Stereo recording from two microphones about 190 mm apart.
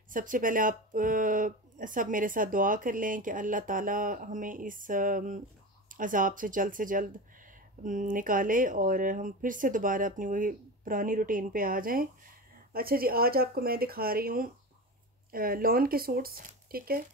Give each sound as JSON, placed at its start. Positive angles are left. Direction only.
{"t": 0.1, "sound": "speech", "side_deg": -45}